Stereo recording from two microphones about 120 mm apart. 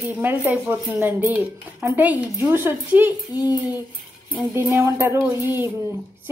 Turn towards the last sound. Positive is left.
turn(degrees=-20)  # may be behind; listen again after turning